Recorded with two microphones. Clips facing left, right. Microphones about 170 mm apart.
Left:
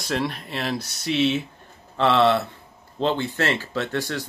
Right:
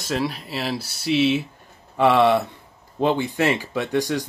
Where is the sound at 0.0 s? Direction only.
Centre (ahead or behind).